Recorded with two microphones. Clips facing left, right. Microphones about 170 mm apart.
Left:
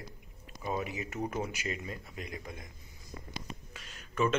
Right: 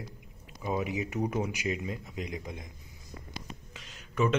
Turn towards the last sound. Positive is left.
turn(degrees=-15)  # may be behind; listen again after turning